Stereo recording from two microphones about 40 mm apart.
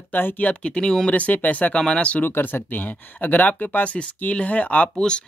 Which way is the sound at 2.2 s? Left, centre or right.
Left.